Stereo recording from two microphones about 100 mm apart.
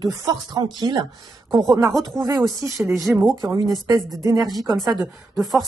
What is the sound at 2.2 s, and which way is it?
Speech, 30° right (ahead or behind).